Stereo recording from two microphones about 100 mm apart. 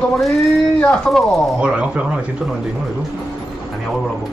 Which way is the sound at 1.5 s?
10° right (ahead or behind).